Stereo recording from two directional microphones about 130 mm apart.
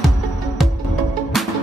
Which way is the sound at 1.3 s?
Centre (ahead or behind).